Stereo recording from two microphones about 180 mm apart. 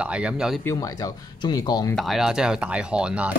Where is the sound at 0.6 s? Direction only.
15° left (ahead or behind).